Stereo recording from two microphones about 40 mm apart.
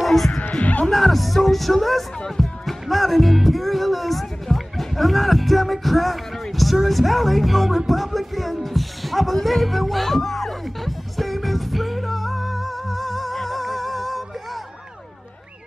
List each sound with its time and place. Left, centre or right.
0.0 s speech: centre
0.8 s music: centre